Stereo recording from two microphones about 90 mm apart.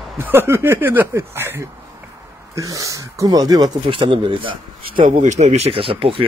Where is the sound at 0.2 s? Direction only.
25° right (ahead or behind).